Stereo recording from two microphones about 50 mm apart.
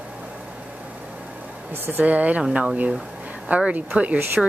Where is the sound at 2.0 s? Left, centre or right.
Right.